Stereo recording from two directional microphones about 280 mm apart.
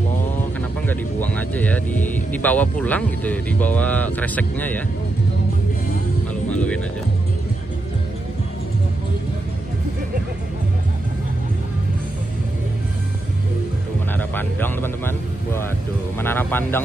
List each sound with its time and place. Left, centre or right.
0.8 s speech: centre
6.5 s speech: centre
14.1 s a man's voice: centre